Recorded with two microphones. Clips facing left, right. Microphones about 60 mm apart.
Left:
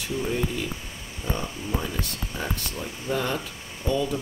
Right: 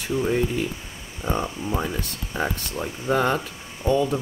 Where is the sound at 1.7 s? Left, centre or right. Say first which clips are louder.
Right 1 dB; right.